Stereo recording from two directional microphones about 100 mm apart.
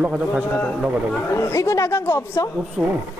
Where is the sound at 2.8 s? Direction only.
5° left (ahead or behind).